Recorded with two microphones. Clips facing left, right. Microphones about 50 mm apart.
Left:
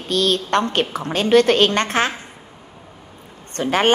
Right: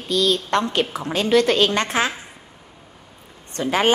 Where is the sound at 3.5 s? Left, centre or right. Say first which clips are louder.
Left 2 dB; left.